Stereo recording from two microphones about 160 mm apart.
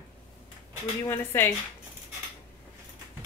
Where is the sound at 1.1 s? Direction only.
15° left (ahead or behind).